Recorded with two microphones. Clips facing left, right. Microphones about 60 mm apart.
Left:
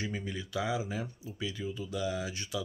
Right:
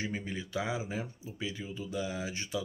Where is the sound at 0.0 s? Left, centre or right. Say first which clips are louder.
Even; right.